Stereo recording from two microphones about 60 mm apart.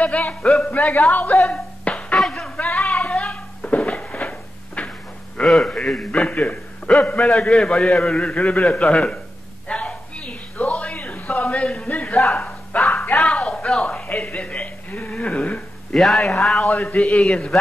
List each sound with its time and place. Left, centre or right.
0.0 s music: left
0.7 s speech: left
1.9 s music: left
2.1 s music: centre
2.4 s a sound: centre
5.4 s a man's voice: centre
5.9 s speech: centre
6.9 s a man's voice: centre
9.7 s a sound: centre
14.0 s a sound: left
15.9 s a man's voice: centre
16.7 s speech: left